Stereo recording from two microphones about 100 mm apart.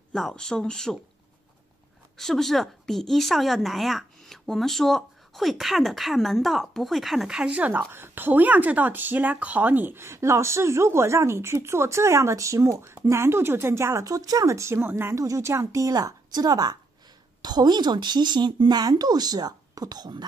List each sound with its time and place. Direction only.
0.1 s speech: 5° left (ahead or behind)
2.1 s speech: 5° left (ahead or behind); by 20.2 s 45° right (ahead or behind)